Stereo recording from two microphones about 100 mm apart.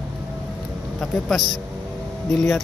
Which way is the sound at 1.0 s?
Centre (ahead or behind).